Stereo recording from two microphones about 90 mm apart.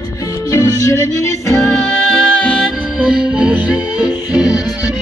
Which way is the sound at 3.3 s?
10° right (ahead or behind).